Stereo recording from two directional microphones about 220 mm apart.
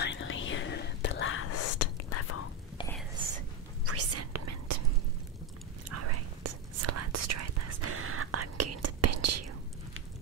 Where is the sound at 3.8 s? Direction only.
90° right.